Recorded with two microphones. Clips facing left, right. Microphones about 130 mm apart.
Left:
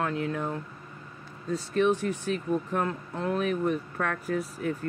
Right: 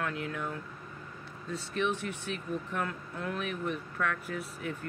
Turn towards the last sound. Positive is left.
turn(degrees=40)  # may be behind; listen again after turning